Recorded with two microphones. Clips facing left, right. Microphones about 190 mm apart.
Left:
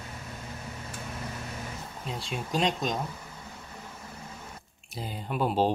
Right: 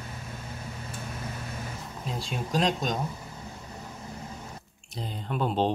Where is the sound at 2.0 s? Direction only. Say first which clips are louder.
Right 2 dB; centre (ahead or behind).